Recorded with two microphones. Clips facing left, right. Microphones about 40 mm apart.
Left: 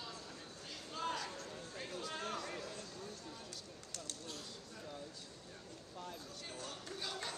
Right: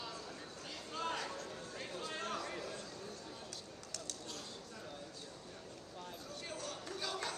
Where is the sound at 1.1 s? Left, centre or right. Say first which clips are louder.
Right 2 dB; right.